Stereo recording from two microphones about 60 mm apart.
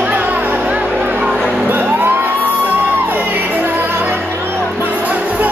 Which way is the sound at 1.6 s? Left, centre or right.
Right.